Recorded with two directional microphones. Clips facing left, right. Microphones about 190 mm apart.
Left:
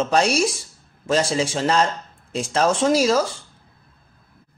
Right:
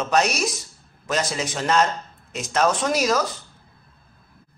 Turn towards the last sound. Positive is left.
turn(degrees=30)  # may be behind; listen again after turning